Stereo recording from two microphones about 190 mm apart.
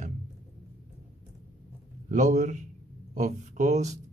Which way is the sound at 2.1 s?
40° right (ahead or behind).